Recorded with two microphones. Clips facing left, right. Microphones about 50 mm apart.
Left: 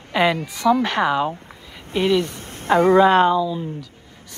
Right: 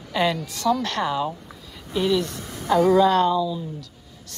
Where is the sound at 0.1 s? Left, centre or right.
Left.